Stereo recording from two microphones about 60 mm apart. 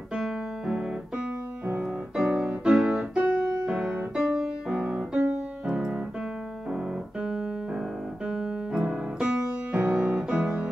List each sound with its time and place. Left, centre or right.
0.1 s piano: centre
1.8 s music: centre
2.7 s piano: centre
3.3 s music: centre
5.3 s keyboard: centre
6.7 s piano: centre
9.9 s music: centre